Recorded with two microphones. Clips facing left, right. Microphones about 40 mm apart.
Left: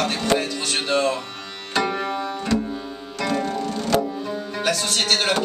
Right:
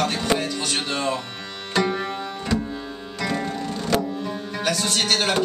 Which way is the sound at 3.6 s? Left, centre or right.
Centre.